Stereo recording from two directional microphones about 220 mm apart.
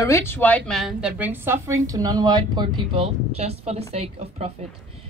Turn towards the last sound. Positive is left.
turn(degrees=-30)  # may be behind; listen again after turning